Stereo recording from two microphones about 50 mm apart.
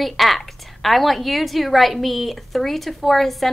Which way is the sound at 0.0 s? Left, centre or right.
Centre.